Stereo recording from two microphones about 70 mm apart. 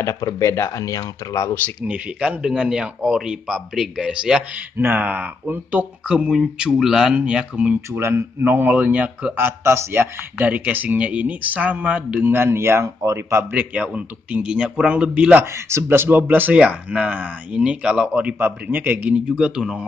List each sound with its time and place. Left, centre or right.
0.0 s speech: left
1.8 s speech: centre
4.6 s speech: right
7.9 s speech: right
9.4 s a man's voice: right
10.4 s speech: right
12.3 s a man's voice: right
13.5 s speech: right
15.4 s a man's voice: right
16.5 s speech: centre